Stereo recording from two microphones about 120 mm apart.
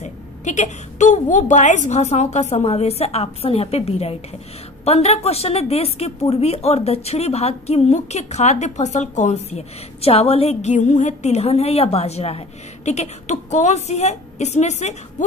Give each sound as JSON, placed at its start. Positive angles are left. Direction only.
{"t": 0.0, "sound": "a woman's voice", "side_deg": 80}